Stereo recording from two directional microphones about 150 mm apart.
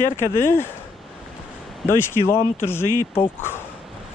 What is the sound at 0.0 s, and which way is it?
Speech, 15° left (ahead or behind).